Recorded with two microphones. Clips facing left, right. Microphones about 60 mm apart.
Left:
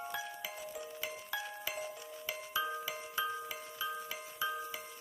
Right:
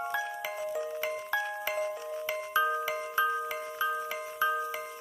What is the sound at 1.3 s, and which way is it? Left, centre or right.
Glockenspiel, right.